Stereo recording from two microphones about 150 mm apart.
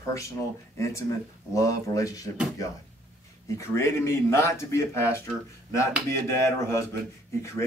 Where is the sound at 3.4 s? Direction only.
20° left (ahead or behind).